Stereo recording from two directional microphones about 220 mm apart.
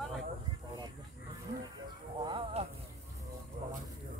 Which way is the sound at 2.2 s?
20° right (ahead or behind).